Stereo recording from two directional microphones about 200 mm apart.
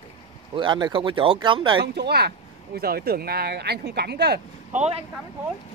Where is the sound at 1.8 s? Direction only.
55° right (ahead or behind).